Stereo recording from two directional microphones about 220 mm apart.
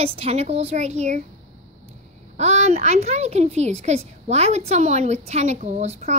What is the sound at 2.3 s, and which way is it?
A woman's voice, 30° right (ahead or behind).